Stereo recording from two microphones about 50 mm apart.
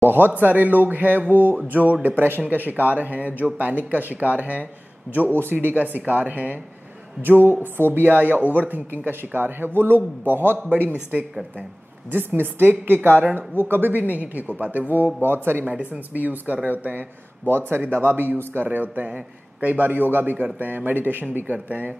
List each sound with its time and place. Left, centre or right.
0.0 s speech: right
5.1 s speech: right
15.6 s speech: right
17.5 s speech: right